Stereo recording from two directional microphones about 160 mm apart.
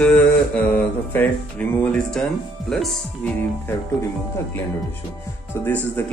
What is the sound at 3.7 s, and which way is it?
Speech, 15° left (ahead or behind).